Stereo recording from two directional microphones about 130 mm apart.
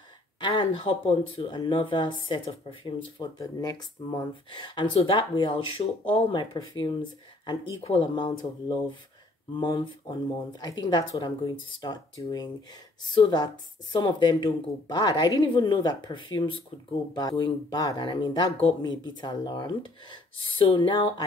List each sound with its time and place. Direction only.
0.4 s speech: 40° left (ahead or behind); by 4.1 s 25° left (ahead or behind)
4.5 s speech: 35° left (ahead or behind)